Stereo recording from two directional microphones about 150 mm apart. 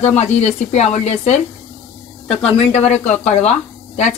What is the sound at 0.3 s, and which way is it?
Speech, 45° left (ahead or behind).